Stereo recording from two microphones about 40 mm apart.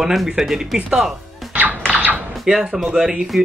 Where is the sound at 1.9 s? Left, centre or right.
Right.